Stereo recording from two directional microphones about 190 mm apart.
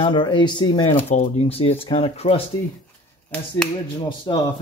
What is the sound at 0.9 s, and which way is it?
Speech, 40° left (ahead or behind).